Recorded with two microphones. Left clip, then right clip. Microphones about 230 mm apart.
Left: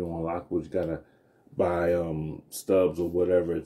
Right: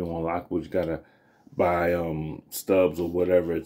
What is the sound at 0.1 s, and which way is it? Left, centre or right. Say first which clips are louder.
Speech: right 2 dB; centre.